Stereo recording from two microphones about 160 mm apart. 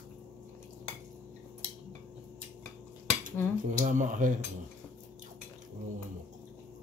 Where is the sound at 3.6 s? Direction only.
50° right (ahead or behind).